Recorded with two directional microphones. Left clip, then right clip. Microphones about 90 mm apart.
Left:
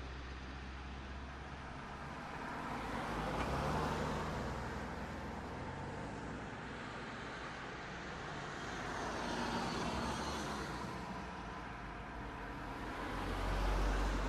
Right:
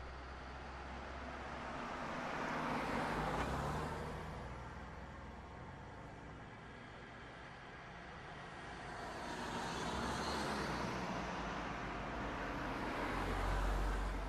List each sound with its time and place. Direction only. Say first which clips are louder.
2.3 s vehicle: right 3 dB; 25° right (ahead or behind); by 3.4 s centre (ahead or behind)
3.4 s vehicle: left 4 dB; 20° left (ahead or behind)
9.2 s vehicle: left 2 dB; 30° left (ahead or behind)
9.8 s vehicle: left 1 dB; 5° left (ahead or behind); by 11.2 s 25° right (ahead or behind)
12.6 s vehicle: right 1 dB; 20° right (ahead or behind)